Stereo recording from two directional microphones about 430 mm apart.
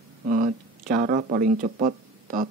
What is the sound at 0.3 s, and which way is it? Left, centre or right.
Speech, centre.